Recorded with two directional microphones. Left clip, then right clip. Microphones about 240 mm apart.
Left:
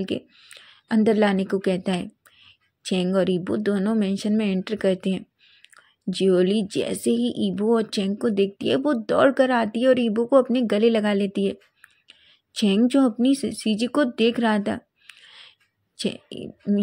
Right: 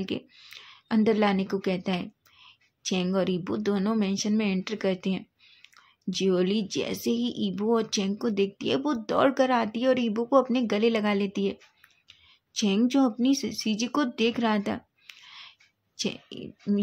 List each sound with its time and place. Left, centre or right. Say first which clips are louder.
0.0 s a woman's voice: left 5 dB; centre